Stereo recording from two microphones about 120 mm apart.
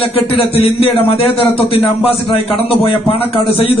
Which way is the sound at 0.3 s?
50° left (ahead or behind).